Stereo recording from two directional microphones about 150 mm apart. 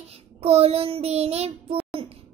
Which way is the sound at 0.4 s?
40° right (ahead or behind).